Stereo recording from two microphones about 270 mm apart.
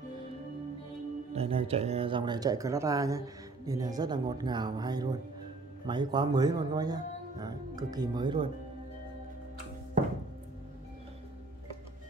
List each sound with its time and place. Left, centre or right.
1.3 s speech: right